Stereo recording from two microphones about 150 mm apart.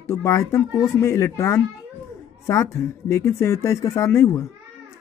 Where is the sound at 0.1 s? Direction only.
20° left (ahead or behind).